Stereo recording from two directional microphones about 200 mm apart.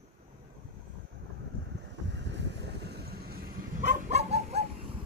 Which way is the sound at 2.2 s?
60° right (ahead or behind).